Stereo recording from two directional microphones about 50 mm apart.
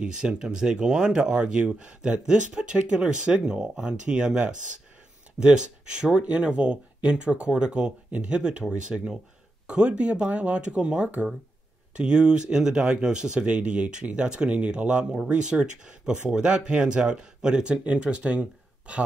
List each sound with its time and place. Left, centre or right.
0.0 s speech: centre